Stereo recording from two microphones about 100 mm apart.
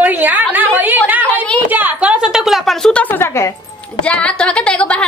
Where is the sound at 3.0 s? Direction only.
20° left (ahead or behind).